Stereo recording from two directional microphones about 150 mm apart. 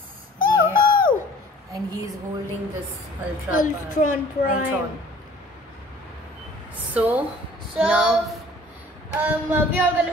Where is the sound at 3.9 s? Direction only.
60° left (ahead or behind).